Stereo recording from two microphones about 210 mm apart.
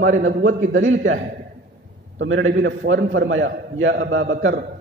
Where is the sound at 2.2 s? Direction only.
70° right (ahead or behind).